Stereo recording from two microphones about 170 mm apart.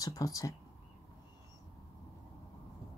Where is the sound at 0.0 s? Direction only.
20° left (ahead or behind).